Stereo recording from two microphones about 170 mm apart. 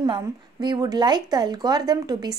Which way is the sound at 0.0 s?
25° right (ahead or behind).